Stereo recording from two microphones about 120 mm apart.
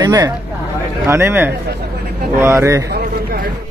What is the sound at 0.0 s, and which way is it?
Speech, 35° right (ahead or behind).